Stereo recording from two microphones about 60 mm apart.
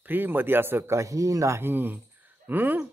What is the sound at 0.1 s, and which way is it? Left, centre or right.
Speech, right.